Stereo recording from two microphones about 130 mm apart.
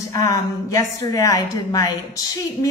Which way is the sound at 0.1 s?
25° left (ahead or behind).